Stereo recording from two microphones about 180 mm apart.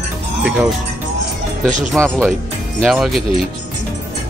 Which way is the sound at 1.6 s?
5° left (ahead or behind).